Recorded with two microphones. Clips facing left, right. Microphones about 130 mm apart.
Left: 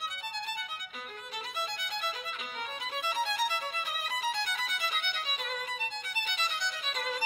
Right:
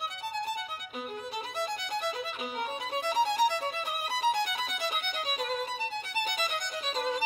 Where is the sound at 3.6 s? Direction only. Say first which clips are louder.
Right 4 dB; 40° right (ahead or behind).